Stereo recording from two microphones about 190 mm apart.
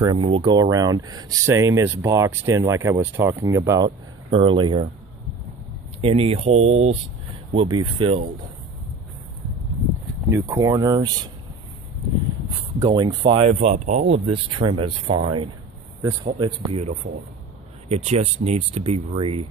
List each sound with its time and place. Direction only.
0.0 s speech: 25° right (ahead or behind)
4.3 s speech: 30° right (ahead or behind)
5.9 s speech: 30° right (ahead or behind)
10.3 s speech: 15° right (ahead or behind)
12.7 s speech: 20° right (ahead or behind)